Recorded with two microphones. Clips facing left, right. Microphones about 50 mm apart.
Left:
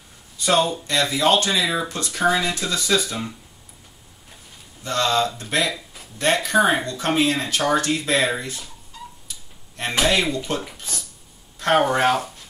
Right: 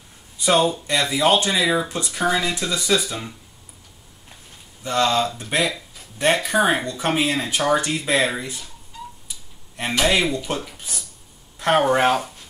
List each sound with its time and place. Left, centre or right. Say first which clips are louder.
0.4 s speech: right 1 dB; centre
1.6 s speech: right 2 dB; centre
4.8 s speech: right 1 dB; centre
10.0 s speech: right 1 dB; centre
11.5 s a sound: even; centre
11.9 s speech: right 1 dB; centre